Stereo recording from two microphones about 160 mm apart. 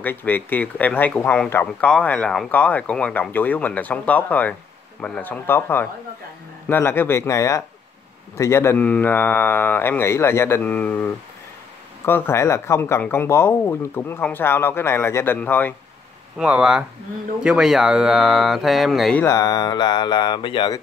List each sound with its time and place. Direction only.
0.0 s speech: 10° left (ahead or behind)
16.3 s speech: 5° right (ahead or behind)
19.2 s speech: 20° left (ahead or behind)